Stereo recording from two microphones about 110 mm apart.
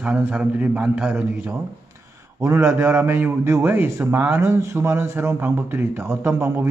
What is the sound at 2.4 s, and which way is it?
A man's voice, 25° right (ahead or behind).